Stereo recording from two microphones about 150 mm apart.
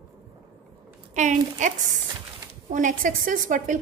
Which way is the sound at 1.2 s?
55° right (ahead or behind).